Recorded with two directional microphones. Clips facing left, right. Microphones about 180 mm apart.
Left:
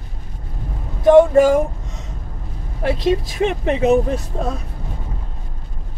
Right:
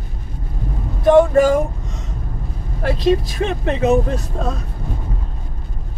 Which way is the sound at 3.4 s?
15° left (ahead or behind).